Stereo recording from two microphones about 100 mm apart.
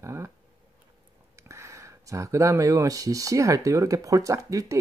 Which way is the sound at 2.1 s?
30° right (ahead or behind).